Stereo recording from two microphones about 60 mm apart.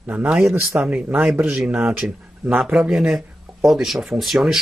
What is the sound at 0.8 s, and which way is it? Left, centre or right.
A man's voice, right.